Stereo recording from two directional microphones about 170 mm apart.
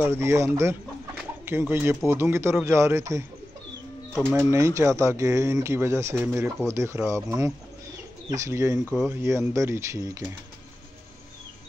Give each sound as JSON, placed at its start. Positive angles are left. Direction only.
{"t": 0.0, "sound": "speech", "side_deg": -15}
{"t": 4.1, "sound": "speech", "side_deg": 0}
{"t": 4.4, "sound": "speech", "side_deg": -15}